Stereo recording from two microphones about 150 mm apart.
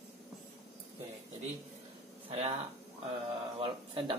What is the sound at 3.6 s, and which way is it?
Speech, 35° right (ahead or behind).